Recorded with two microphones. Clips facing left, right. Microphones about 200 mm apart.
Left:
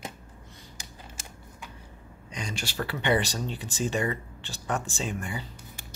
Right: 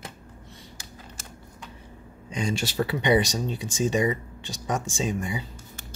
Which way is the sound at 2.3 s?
30° right (ahead or behind).